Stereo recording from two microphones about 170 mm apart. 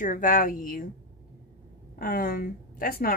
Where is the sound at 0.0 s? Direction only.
55° left (ahead or behind).